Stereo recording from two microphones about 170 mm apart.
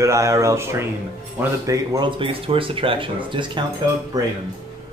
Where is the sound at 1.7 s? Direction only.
25° right (ahead or behind).